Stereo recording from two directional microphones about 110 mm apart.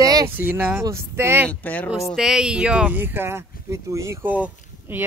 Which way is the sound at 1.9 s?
5° right (ahead or behind).